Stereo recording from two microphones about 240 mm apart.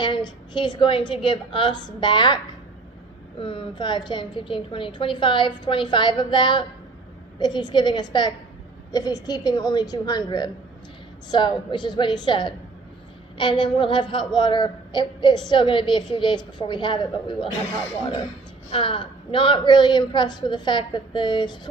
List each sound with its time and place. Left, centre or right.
0.0 s a woman's voice: centre
18.7 s a woman's voice: left